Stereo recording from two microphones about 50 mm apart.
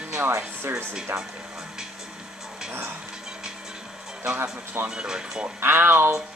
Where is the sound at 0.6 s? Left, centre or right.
Right.